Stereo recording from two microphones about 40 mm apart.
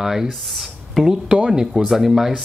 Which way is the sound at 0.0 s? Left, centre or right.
Centre.